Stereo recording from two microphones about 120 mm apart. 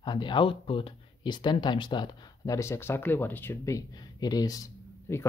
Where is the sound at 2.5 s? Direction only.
20° left (ahead or behind).